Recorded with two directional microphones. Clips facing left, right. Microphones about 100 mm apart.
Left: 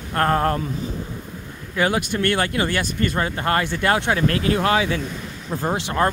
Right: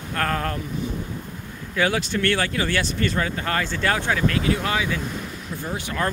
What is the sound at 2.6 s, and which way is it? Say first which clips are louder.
Speech: left 1 dB; 45° left (ahead or behind).